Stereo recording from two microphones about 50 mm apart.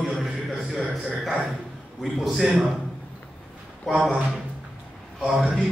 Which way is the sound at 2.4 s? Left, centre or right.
Right.